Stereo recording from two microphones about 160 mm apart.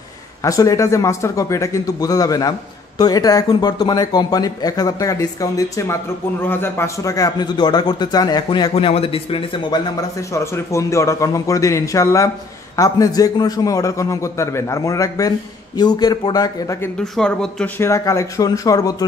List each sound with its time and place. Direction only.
0.4 s a man's voice: 20° left (ahead or behind)
17.0 s speech: 5° left (ahead or behind)
17.8 s a man's voice: 20° left (ahead or behind)